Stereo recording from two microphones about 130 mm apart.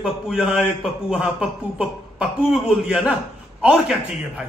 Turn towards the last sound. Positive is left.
turn(degrees=-5)  # may be behind; listen again after turning